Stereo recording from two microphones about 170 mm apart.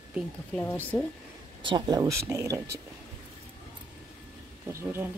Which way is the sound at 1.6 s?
25° right (ahead or behind).